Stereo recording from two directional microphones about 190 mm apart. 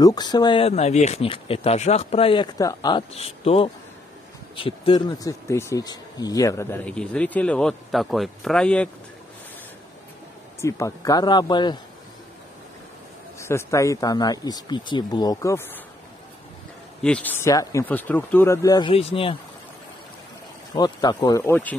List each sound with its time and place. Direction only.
0.0 s speech: 20° left (ahead or behind); by 8.9 s 5° left (ahead or behind)
10.6 s speech: 15° left (ahead or behind)
13.4 s speech: 15° left (ahead or behind)
17.0 s speech: 5° left (ahead or behind); by 19.3 s 30° left (ahead or behind)
20.7 s speech: 20° left (ahead or behind)